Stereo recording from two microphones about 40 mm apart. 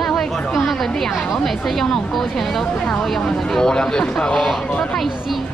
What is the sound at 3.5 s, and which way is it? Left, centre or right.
Speech, centre.